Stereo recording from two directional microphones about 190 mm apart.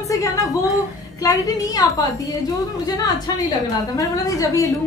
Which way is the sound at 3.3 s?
20° left (ahead or behind).